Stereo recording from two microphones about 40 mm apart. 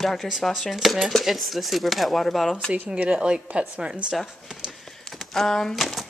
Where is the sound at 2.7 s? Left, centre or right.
Right.